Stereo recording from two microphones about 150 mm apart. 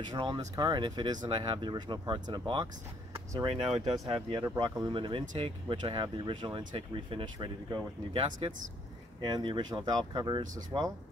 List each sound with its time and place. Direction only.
0.0 s speech: 30° right (ahead or behind)
3.7 s speech: centre (ahead or behind)
4.1 s speech: 30° right (ahead or behind)